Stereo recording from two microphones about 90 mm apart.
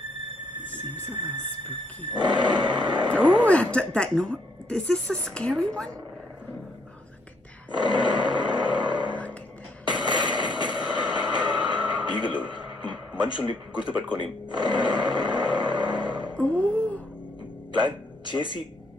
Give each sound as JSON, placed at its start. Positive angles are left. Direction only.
{"t": 2.1, "sound": "grunt", "side_deg": -55}
{"t": 3.4, "sound": "a woman's voice", "side_deg": 15}
{"t": 7.7, "sound": "roar", "side_deg": -55}
{"t": 9.9, "sound": "a sound", "side_deg": -55}
{"t": 13.2, "sound": "grunt", "side_deg": -55}
{"t": 14.1, "sound": "music", "side_deg": -55}
{"t": 16.3, "sound": "music", "side_deg": 15}
{"t": 17.7, "sound": "music", "side_deg": -55}